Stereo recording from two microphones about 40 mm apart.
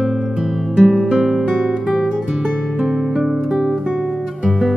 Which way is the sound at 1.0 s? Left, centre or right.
Centre.